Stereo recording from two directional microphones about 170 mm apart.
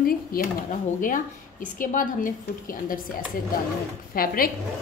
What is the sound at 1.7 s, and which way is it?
A woman's voice, 55° left (ahead or behind).